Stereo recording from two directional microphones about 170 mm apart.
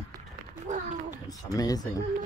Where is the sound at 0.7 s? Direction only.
45° right (ahead or behind).